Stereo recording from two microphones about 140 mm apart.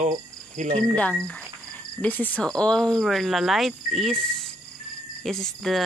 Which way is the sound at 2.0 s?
10° left (ahead or behind).